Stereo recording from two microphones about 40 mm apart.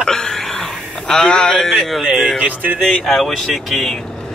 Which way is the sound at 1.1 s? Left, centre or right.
Left.